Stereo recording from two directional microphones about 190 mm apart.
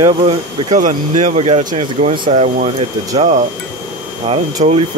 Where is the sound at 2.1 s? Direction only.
25° right (ahead or behind).